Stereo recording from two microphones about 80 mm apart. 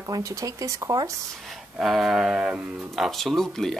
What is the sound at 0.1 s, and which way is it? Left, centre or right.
Speech, right.